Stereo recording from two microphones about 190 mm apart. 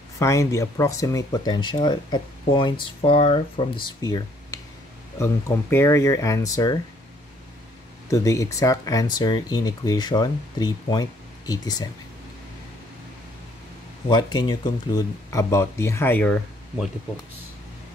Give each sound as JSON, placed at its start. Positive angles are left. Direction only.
{"t": 0.2, "sound": "speech", "side_deg": 15}
{"t": 8.1, "sound": "speech", "side_deg": 15}
{"t": 14.0, "sound": "speech", "side_deg": 25}